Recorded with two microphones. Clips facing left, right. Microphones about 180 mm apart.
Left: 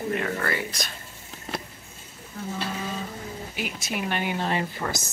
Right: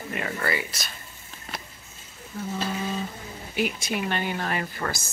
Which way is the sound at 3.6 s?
5° left (ahead or behind).